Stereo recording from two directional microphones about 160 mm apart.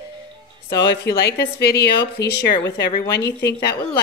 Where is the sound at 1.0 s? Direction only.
90° left.